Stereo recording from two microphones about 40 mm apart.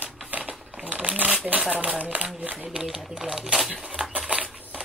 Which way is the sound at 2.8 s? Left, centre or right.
Centre.